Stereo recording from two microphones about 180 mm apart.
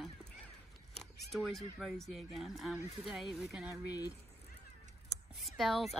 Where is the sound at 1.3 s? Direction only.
Centre (ahead or behind).